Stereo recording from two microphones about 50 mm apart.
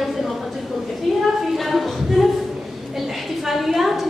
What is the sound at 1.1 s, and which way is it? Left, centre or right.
Speech, centre.